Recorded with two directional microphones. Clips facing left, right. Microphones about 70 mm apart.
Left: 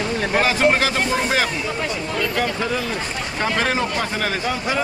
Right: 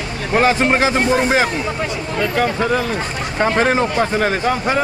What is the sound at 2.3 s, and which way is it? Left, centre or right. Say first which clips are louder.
Speech: right 8 dB; right.